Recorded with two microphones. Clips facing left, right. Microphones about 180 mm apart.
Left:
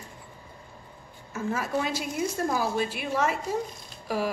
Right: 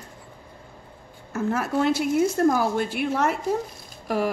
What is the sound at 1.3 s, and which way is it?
A woman's voice, 65° right (ahead or behind).